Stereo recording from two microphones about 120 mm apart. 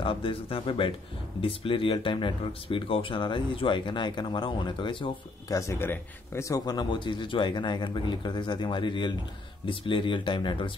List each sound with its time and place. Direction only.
0.0 s speech: 45° left (ahead or behind)
5.5 s a man's voice: 25° left (ahead or behind); by 10.7 s 45° left (ahead or behind)